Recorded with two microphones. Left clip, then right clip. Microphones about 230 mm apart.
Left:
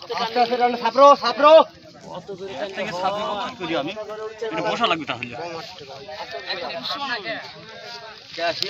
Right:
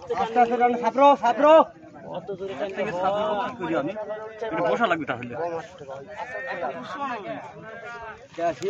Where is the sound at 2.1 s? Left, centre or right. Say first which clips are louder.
Even; centre.